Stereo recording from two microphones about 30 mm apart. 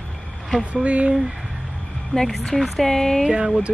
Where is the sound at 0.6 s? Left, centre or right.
Right.